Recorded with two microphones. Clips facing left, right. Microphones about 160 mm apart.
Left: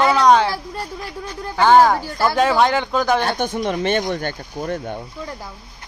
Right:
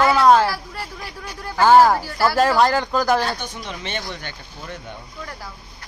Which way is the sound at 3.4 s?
50° left (ahead or behind).